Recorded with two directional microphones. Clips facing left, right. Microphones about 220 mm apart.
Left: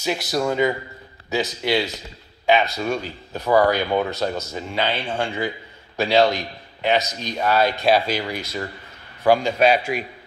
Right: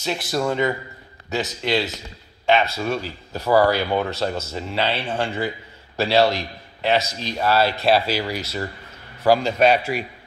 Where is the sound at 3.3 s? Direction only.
5° right (ahead or behind).